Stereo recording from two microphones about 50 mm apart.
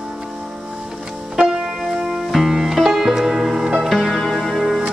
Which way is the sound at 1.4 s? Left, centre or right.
Centre.